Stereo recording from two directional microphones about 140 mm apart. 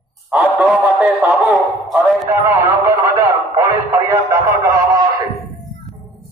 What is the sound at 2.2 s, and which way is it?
Speech, 15° right (ahead or behind).